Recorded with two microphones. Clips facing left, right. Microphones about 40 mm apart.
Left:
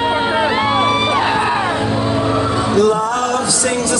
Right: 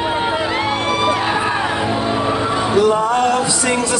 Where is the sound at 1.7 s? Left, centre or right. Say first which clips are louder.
Left 1 dB; centre.